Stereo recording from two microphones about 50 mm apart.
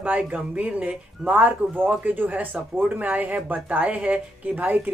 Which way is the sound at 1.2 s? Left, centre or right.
Right.